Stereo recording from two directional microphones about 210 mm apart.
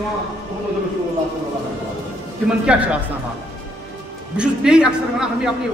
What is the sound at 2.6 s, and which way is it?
Speech, 5° right (ahead or behind).